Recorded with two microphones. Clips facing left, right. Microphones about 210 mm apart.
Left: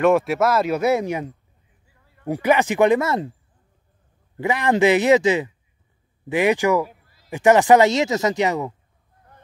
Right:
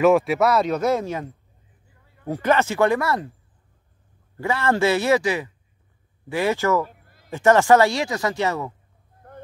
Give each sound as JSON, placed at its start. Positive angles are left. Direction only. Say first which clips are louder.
{"t": 0.0, "sound": "speech", "louder": "even", "side_deg": 0}
{"t": 4.4, "sound": "a man's voice", "louder": "left 3 dB", "side_deg": 15}